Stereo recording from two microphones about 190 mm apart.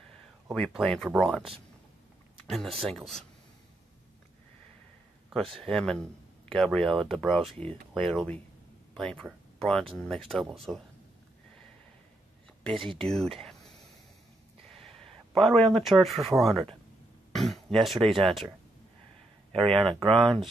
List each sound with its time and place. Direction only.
0.5 s speech: centre (ahead or behind)
5.6 s speech: 5° left (ahead or behind)
7.5 s speech: 30° right (ahead or behind)
7.9 s speech: 5° left (ahead or behind)
13.0 s speech: centre (ahead or behind)
14.8 s speech: centre (ahead or behind)
19.7 s speech: centre (ahead or behind)